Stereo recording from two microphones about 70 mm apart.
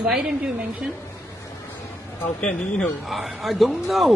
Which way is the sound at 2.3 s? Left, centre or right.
Centre.